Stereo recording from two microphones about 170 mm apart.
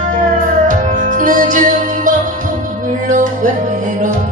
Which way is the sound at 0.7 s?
50° right (ahead or behind).